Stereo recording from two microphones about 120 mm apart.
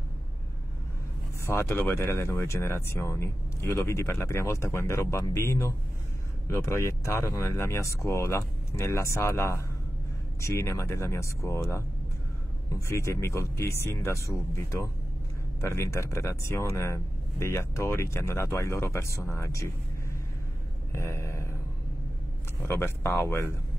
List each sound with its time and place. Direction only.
1.4 s speech: 20° left (ahead or behind)
12.8 s speech: 25° left (ahead or behind)
20.9 s speech: 20° left (ahead or behind)
22.6 s speech: 20° left (ahead or behind)